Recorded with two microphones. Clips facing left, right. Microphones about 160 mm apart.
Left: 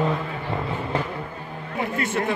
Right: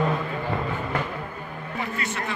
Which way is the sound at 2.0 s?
50° left (ahead or behind).